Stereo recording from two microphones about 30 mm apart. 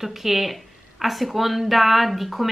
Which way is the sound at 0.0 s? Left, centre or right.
Centre.